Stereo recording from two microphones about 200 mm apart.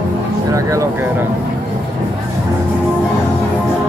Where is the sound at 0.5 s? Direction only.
15° right (ahead or behind).